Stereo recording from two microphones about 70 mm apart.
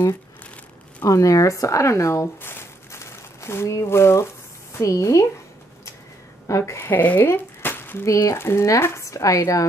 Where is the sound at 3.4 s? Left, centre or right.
Left.